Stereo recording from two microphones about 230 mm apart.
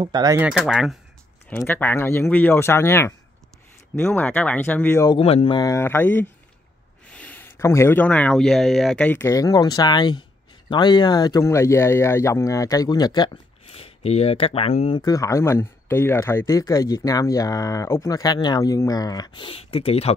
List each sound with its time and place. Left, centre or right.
0.0 s speech: centre
0.5 s speech: centre; by 20.2 s left